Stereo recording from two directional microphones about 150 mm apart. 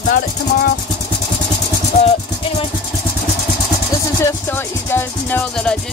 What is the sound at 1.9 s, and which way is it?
Music, 55° left (ahead or behind).